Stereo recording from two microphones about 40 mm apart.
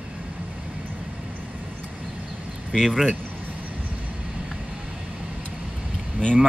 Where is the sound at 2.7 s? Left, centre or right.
Centre.